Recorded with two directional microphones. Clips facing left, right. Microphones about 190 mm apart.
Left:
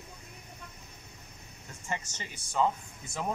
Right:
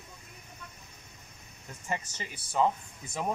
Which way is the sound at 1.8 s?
10° right (ahead or behind).